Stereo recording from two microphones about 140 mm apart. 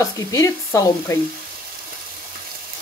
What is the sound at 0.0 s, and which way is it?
Sizzle, 25° left (ahead or behind).